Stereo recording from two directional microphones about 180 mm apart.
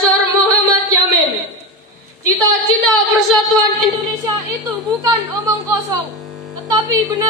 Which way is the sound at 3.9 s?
20° right (ahead or behind).